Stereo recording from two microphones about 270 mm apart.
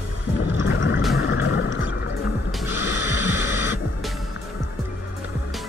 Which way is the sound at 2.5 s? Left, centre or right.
Centre.